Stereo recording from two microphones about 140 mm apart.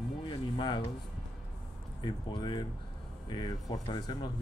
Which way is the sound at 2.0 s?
35° left (ahead or behind).